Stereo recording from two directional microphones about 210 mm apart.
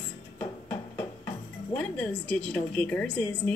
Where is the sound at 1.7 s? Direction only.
5° left (ahead or behind).